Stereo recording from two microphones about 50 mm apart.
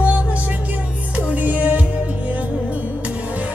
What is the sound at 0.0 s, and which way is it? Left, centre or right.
Music, right.